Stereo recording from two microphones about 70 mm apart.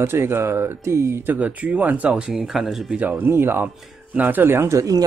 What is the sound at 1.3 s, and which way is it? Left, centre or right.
Speech, right.